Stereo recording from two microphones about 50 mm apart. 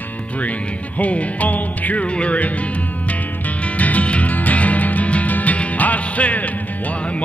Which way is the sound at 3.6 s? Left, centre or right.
Left.